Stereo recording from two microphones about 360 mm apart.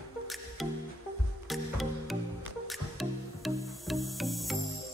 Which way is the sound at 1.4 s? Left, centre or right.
Centre.